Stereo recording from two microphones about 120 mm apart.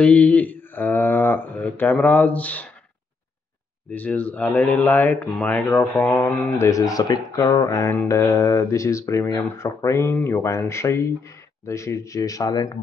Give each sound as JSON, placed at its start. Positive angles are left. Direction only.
{"t": 0.0, "sound": "speech", "side_deg": 10}
{"t": 3.9, "sound": "speech", "side_deg": 15}
{"t": 6.7, "sound": "speech", "side_deg": 30}